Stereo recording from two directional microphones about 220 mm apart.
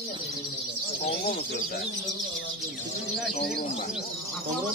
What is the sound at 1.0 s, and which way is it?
Speech, 45° left (ahead or behind).